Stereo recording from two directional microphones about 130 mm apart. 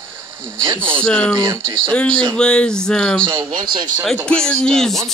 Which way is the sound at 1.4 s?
40° right (ahead or behind).